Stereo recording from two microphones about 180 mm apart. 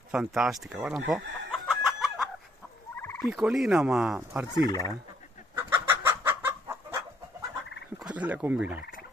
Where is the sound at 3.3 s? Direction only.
5° right (ahead or behind).